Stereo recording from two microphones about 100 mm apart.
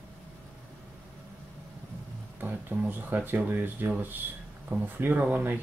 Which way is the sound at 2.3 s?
20° right (ahead or behind).